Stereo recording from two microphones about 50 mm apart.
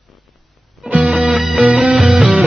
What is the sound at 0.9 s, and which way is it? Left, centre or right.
Music, right.